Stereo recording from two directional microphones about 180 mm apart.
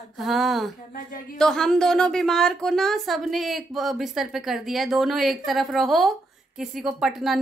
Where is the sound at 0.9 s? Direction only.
45° left (ahead or behind).